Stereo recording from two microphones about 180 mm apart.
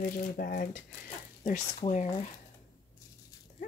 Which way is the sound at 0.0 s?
50° left (ahead or behind).